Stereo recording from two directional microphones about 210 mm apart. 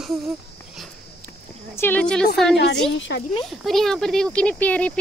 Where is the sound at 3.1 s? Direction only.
55° left (ahead or behind).